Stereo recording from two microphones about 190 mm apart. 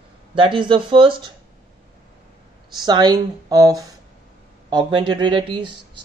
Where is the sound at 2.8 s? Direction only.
20° right (ahead or behind).